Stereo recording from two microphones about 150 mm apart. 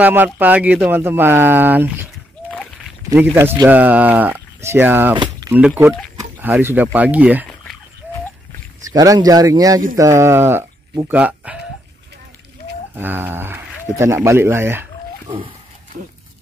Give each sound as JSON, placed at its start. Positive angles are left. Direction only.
{"t": 0.0, "sound": "speech", "side_deg": -10}
{"t": 3.2, "sound": "speech", "side_deg": -15}
{"t": 5.1, "sound": "a sound", "side_deg": -30}
{"t": 6.4, "sound": "speech", "side_deg": -15}
{"t": 8.9, "sound": "speech", "side_deg": -25}
{"t": 12.9, "sound": "speech", "side_deg": -15}
{"t": 15.2, "sound": "speech", "side_deg": -35}